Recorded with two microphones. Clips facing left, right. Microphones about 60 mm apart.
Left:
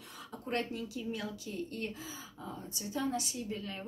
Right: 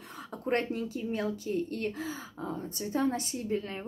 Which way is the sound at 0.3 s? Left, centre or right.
Right.